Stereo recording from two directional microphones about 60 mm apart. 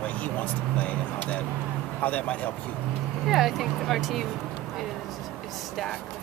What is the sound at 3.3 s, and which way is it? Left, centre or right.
Speech, centre.